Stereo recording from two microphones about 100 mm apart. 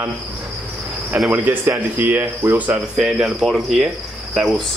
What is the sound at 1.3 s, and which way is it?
A man's voice, 20° right (ahead or behind).